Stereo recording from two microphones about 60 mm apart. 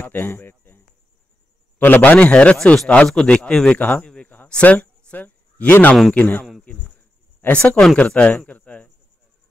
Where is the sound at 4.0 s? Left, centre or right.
Centre.